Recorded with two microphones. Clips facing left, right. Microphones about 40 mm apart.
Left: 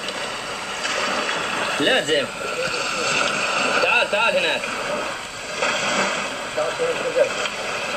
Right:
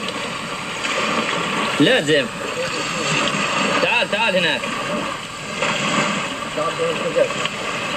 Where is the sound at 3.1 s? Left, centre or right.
Right.